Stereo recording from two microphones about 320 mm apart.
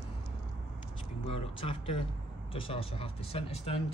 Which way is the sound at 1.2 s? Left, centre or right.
Centre.